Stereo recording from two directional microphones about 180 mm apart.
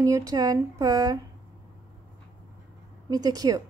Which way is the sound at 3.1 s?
20° right (ahead or behind).